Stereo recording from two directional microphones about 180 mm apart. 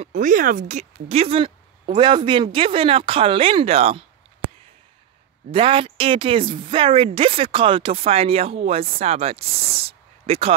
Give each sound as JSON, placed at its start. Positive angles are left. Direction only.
{"t": 0.0, "sound": "a woman's voice", "side_deg": -45}
{"t": 5.5, "sound": "a woman's voice", "side_deg": -30}